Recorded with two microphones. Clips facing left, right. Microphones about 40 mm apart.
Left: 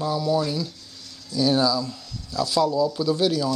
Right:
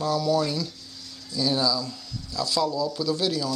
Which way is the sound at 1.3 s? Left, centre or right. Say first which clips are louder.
Left 4 dB; left.